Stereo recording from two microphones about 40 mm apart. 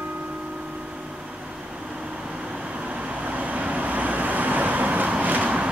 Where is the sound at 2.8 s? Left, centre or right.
Right.